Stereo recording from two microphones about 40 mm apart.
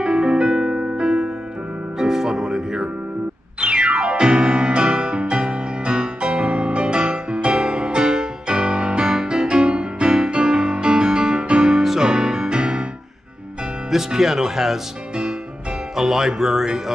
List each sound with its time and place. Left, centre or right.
0.0 s music: right
13.8 s speech: centre
16.0 s speech: centre